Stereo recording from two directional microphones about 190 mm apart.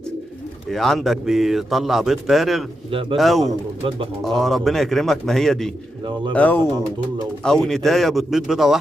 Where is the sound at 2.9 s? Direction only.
30° right (ahead or behind).